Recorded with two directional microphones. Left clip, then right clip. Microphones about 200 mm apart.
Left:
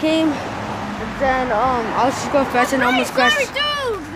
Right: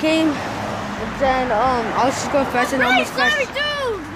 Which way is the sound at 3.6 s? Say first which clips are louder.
Left 1 dB; 20° left (ahead or behind).